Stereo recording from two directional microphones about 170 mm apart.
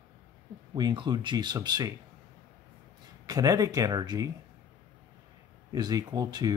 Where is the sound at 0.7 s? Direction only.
25° right (ahead or behind).